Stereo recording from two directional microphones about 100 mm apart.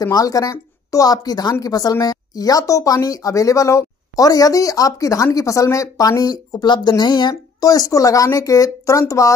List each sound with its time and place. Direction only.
0.0 s speech: 35° left (ahead or behind)